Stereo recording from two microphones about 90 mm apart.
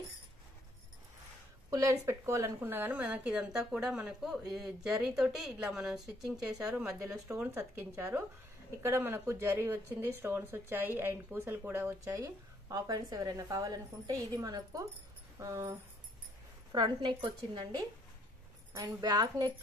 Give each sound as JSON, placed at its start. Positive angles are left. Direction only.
{"t": 1.7, "sound": "a woman's voice", "side_deg": -35}
{"t": 7.0, "sound": "a woman's voice", "side_deg": -35}
{"t": 12.0, "sound": "a woman's voice", "side_deg": -35}
{"t": 15.3, "sound": "a sound", "side_deg": -35}
{"t": 16.7, "sound": "a woman's voice", "side_deg": -60}
{"t": 18.7, "sound": "speech", "side_deg": -35}
{"t": 19.0, "sound": "a woman's voice", "side_deg": -50}